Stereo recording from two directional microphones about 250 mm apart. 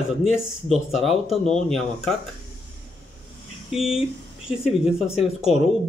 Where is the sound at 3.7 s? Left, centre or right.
Centre.